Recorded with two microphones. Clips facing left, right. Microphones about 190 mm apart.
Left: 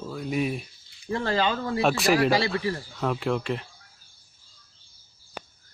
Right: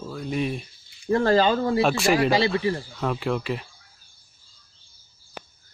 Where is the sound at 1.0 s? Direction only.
45° right (ahead or behind).